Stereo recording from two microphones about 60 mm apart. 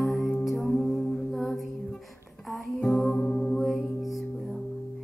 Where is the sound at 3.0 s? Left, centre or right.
Left.